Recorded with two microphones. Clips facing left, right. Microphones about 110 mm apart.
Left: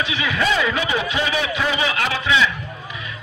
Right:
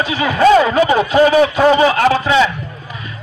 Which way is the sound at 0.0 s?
40° right (ahead or behind).